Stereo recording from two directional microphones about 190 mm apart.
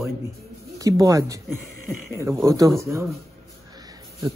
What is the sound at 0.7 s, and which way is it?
Speech, 20° right (ahead or behind).